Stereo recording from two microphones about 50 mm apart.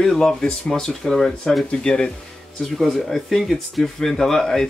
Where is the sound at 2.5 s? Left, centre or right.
Centre.